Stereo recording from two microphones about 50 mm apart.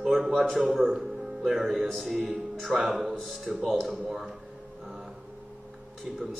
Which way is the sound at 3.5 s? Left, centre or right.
Centre.